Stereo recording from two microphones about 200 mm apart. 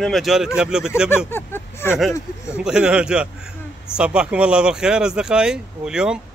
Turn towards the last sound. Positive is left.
turn(degrees=-5)  # may be behind; listen again after turning